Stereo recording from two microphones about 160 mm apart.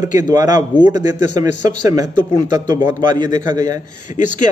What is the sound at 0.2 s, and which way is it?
A man's voice, 25° right (ahead or behind).